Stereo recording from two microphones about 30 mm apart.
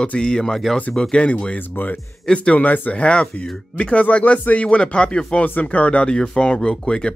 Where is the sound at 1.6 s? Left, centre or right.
Left.